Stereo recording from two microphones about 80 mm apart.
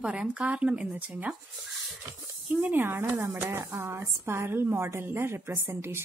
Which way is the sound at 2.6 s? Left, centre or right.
Right.